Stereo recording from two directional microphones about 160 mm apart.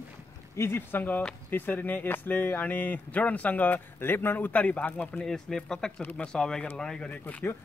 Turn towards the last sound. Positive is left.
turn(degrees=15)  # may be behind; listen again after turning